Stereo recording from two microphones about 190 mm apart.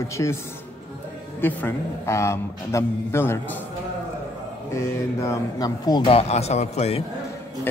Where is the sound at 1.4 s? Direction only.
10° left (ahead or behind).